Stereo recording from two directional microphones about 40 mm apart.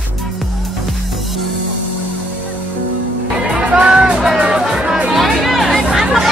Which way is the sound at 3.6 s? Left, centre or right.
Right.